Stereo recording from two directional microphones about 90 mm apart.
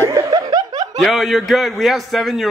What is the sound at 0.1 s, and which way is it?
Chuckle, 45° right (ahead or behind).